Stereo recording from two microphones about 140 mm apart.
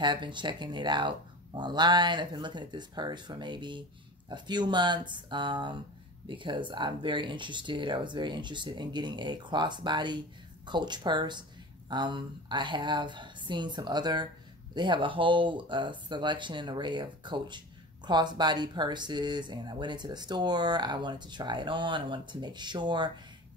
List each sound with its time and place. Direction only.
0.0 s a woman's voice: 35° right (ahead or behind)